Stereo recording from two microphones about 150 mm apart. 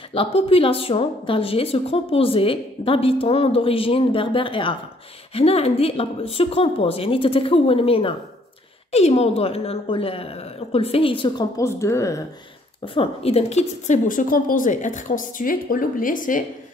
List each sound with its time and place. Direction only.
0.1 s a woman's voice: 40° left (ahead or behind)
11.5 s speech: 20° left (ahead or behind)
12.8 s a woman's voice: 35° left (ahead or behind); by 16.4 s 60° left (ahead or behind)